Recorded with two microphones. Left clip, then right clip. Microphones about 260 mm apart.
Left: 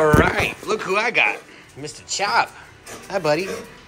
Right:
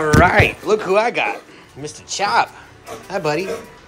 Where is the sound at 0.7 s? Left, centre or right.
Centre.